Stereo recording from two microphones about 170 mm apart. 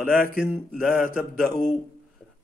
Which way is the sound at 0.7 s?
Centre (ahead or behind).